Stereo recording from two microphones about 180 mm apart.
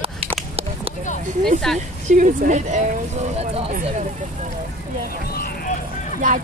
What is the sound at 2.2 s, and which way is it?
Speech, 40° right (ahead or behind).